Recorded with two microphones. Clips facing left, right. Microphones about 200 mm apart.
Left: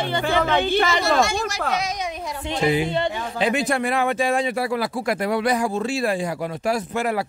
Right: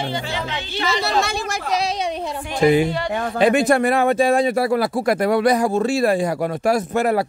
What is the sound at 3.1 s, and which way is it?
Speech, 55° right (ahead or behind).